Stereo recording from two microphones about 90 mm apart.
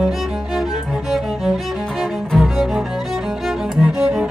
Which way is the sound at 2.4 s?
5° right (ahead or behind).